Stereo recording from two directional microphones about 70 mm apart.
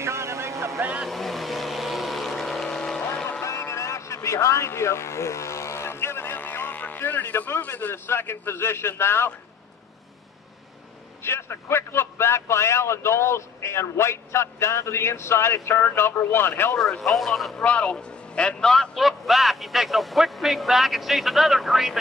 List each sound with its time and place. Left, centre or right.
0.0 s vehicle: right
1.0 s vehicle: centre
3.4 s a sound: left
11.2 s a man's voice: left
17.0 s a man's voice: centre
17.6 s a man's voice: centre